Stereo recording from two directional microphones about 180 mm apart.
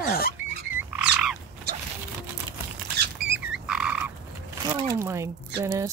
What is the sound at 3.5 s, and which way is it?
Frog, 5° right (ahead or behind).